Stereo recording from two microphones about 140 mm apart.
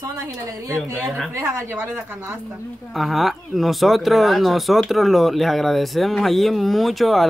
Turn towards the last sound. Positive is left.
turn(degrees=0)  # may be behind; listen again after turning